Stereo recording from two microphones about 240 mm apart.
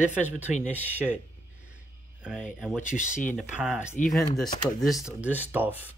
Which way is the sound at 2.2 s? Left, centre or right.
Centre.